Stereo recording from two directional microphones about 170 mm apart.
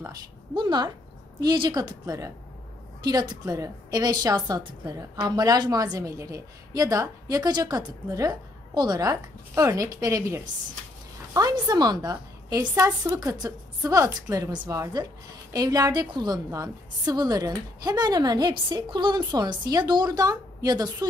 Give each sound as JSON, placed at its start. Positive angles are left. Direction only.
{"t": 0.6, "sound": "a woman's voice", "side_deg": -25}
{"t": 11.6, "sound": "a woman's voice", "side_deg": -25}